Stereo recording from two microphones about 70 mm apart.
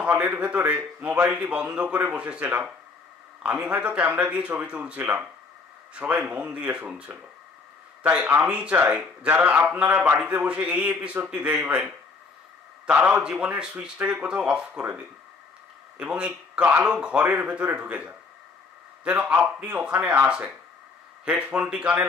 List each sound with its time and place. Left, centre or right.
0.0 s speech: right
8.0 s a man's voice: right